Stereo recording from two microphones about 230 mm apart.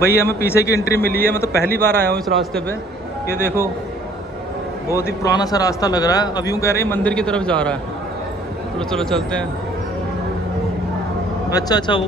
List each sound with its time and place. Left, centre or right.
0.2 s a man's voice: centre
4.8 s a man's voice: centre
8.7 s speech: centre
11.5 s speech: centre